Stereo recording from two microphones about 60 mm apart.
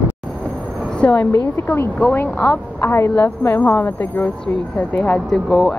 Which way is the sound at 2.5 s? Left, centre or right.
Left.